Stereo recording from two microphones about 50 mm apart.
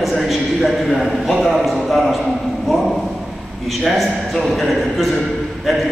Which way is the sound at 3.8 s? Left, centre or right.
Centre.